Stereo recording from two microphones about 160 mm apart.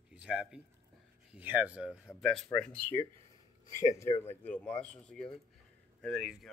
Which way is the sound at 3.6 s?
20° left (ahead or behind).